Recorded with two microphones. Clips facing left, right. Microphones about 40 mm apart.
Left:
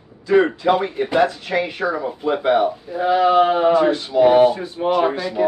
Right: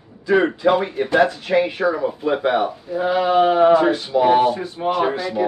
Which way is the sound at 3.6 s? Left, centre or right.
Centre.